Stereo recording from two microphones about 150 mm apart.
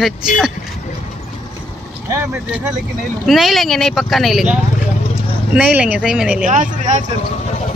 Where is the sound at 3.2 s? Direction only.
Centre (ahead or behind).